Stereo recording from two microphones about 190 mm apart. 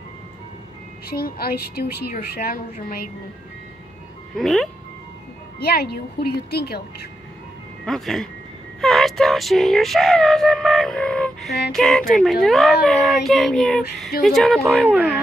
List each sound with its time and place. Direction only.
1.0 s a woman's voice: 55° left (ahead or behind)
4.4 s music: centre (ahead or behind)
5.6 s a woman's voice: 55° left (ahead or behind)
7.8 s music: centre (ahead or behind)